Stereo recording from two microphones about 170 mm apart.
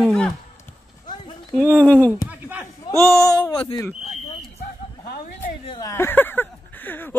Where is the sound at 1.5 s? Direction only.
10° left (ahead or behind).